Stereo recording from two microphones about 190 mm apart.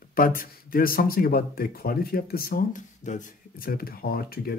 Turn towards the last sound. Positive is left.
turn(degrees=55)  # may be behind; listen again after turning